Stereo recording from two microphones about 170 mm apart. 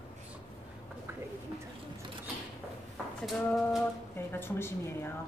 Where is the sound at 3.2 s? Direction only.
Centre (ahead or behind).